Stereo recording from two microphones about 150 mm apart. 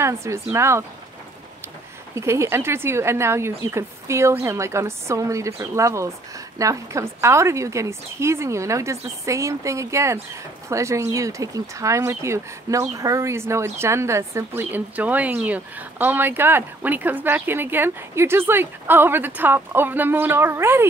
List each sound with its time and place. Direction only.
0.0 s speech: 20° right (ahead or behind)
2.1 s a woman's voice: 20° right (ahead or behind)